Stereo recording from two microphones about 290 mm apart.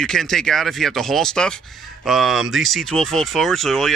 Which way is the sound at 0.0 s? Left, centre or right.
Centre.